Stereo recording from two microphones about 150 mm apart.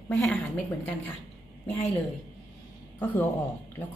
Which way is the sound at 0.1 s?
15° left (ahead or behind).